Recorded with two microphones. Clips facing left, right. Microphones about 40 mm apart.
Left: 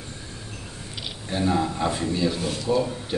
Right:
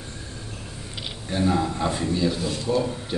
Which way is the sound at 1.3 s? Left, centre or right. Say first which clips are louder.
Right 1 dB; centre.